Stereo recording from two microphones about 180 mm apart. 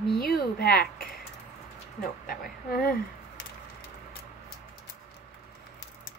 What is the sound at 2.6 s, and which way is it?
Speech, 50° left (ahead or behind).